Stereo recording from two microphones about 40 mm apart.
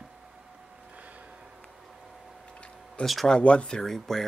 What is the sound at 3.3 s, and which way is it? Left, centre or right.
Speech, left.